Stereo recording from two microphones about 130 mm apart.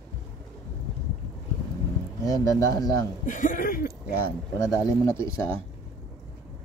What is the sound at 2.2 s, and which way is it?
Speech, 25° left (ahead or behind).